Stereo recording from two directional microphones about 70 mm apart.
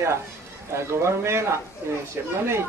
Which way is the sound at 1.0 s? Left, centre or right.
Right.